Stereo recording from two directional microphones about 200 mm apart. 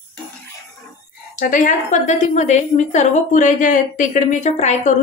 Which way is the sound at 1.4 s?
40° left (ahead or behind).